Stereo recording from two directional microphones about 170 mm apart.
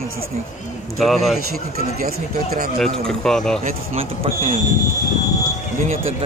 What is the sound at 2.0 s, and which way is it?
Speech, 60° right (ahead or behind).